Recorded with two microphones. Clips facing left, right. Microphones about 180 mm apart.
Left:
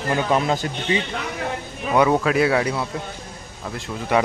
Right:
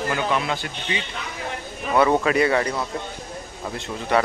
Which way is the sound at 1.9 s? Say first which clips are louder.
Left 1 dB; 5° left (ahead or behind).